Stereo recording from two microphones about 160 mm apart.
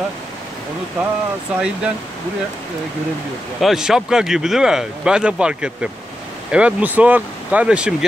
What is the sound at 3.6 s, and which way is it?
Speech, 5° right (ahead or behind).